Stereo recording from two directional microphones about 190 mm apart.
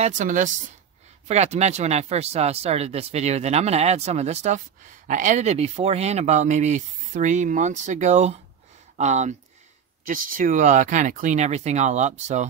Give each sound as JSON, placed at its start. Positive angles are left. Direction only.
{"t": 0.0, "sound": "speech", "side_deg": -40}